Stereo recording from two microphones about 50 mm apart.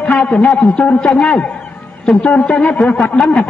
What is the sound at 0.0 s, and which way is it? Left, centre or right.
A man's voice, left.